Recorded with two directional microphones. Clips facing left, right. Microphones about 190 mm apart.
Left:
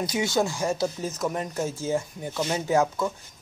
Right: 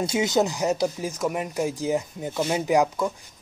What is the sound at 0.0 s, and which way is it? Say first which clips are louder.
Speech: right 3 dB; 25° right (ahead or behind).